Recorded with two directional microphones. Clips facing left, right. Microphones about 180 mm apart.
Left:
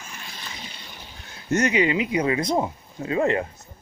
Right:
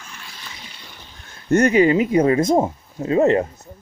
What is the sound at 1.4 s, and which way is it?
Speech, 55° right (ahead or behind).